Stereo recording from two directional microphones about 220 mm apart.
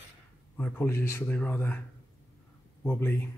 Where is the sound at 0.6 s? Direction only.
10° left (ahead or behind).